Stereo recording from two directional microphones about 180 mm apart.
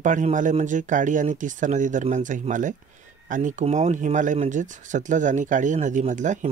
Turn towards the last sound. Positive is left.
turn(degrees=-45)  # may be behind; listen again after turning